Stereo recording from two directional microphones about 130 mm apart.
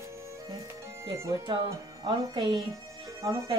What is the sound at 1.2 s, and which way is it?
Speech, 20° right (ahead or behind).